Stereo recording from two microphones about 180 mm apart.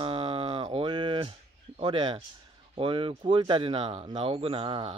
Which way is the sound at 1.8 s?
25° right (ahead or behind).